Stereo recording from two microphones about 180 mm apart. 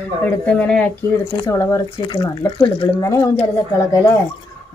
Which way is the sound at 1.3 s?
20° left (ahead or behind).